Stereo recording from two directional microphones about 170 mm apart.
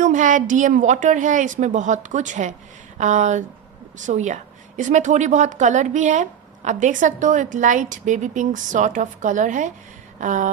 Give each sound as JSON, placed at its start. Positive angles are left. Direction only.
{"t": 0.0, "sound": "a woman's voice", "side_deg": -50}